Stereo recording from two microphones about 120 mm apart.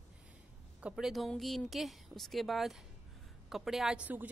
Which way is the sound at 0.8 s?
Centre (ahead or behind).